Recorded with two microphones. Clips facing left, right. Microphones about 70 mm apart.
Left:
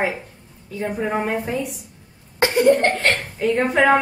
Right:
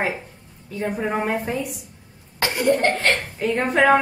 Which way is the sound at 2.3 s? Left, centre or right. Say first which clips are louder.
Left 6 dB; left.